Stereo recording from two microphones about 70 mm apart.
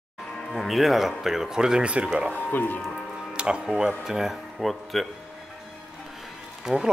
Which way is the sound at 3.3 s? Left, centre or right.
Centre.